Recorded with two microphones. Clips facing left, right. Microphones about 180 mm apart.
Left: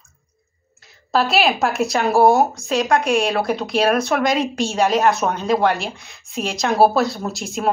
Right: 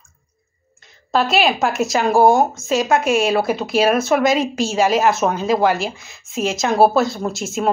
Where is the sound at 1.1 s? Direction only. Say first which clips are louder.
Right 1 dB; centre (ahead or behind).